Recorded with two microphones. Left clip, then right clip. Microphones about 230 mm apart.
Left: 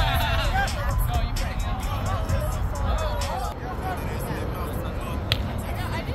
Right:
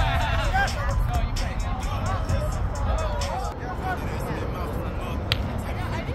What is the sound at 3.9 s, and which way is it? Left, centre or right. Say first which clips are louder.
Vehicle: even; left.